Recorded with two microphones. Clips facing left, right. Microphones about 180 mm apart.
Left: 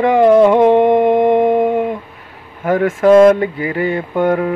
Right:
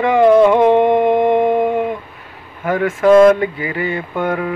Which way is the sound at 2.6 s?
45° left (ahead or behind).